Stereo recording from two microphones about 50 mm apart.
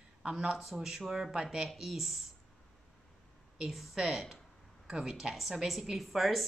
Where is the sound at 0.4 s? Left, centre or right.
Centre.